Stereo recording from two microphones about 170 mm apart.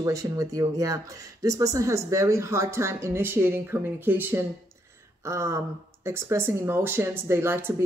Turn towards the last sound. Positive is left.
turn(degrees=-15)  # may be behind; listen again after turning